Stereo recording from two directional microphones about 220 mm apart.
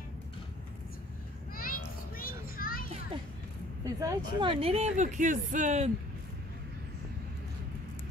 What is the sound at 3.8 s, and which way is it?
Speech, 15° right (ahead or behind).